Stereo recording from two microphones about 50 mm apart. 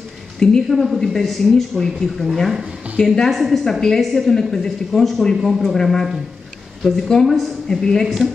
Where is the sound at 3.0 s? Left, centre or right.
Centre.